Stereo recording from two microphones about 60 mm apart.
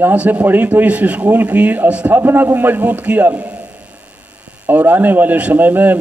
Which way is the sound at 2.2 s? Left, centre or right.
Right.